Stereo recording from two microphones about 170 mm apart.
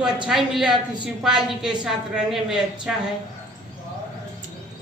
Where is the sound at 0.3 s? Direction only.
Centre (ahead or behind).